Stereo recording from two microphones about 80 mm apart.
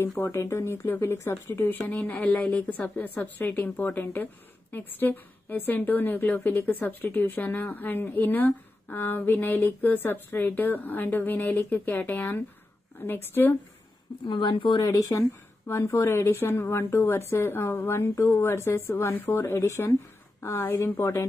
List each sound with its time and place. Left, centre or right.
0.2 s a woman's voice: left
14.2 s speech: left
14.9 s a woman's voice: left